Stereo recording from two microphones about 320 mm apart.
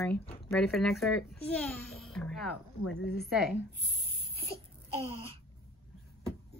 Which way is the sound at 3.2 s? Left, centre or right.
Centre.